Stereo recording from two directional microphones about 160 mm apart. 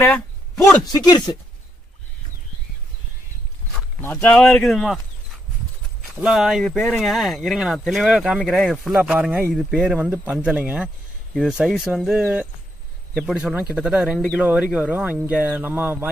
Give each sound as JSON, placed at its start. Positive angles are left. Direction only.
{"t": 0.6, "sound": "a man's voice", "side_deg": 20}
{"t": 4.0, "sound": "speech", "side_deg": 15}
{"t": 6.1, "sound": "speech", "side_deg": -5}